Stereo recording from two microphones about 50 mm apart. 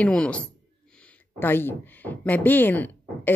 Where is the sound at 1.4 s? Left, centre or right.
Left.